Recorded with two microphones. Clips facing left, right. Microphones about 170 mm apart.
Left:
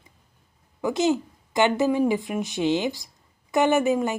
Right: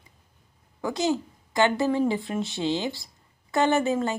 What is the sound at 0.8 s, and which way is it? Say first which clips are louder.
Speech: left 3 dB; 20° left (ahead or behind).